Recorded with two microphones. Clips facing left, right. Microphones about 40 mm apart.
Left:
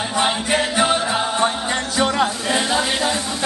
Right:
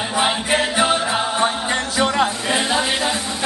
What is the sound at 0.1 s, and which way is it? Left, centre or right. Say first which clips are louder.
Music: right 1 dB; centre.